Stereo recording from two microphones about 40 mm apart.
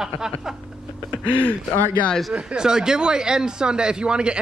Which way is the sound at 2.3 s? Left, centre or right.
Centre.